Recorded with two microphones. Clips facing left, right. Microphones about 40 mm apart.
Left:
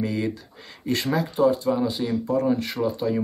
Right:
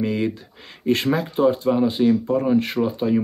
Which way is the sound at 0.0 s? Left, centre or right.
Right.